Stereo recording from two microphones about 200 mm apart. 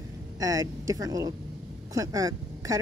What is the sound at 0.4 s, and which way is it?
Speech, 15° right (ahead or behind).